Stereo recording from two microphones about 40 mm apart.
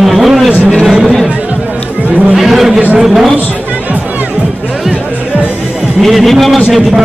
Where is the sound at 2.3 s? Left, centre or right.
Centre.